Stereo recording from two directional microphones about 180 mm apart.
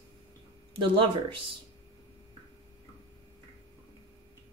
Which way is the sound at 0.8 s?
30° right (ahead or behind).